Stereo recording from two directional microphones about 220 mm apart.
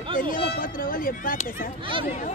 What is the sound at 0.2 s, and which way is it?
Speech, 35° left (ahead or behind).